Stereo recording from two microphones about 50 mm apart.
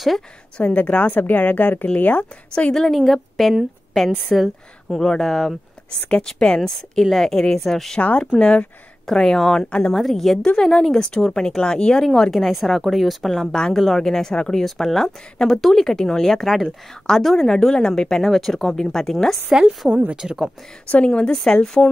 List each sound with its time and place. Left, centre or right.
0.6 s a woman's voice: left
2.7 s speech: centre
6.0 s a woman's voice: centre
8.0 s a woman's voice: left
9.9 s a woman's voice: centre
19.5 s speech: centre
20.2 s speech: centre
20.9 s a woman's voice: left